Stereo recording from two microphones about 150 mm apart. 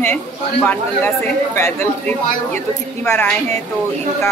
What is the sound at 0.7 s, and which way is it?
Speech, 15° left (ahead or behind).